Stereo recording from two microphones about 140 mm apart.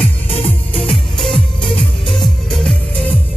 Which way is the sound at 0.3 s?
40° left (ahead or behind).